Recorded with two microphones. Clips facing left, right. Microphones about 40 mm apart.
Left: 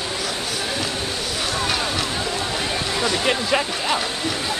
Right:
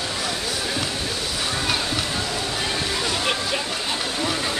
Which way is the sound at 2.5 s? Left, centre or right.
Centre.